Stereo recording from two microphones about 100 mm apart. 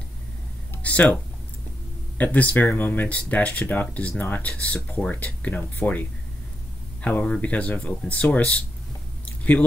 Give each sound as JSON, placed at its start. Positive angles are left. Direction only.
{"t": 0.8, "sound": "speech", "side_deg": 15}
{"t": 9.2, "sound": "squish", "side_deg": 15}